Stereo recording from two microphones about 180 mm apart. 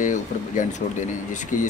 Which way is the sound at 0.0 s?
45° left (ahead or behind).